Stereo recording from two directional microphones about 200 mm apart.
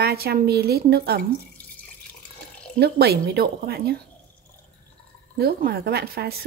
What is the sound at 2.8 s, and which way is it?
A woman's voice, 55° right (ahead or behind).